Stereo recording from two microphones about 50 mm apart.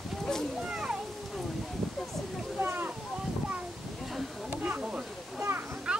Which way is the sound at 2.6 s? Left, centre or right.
Right.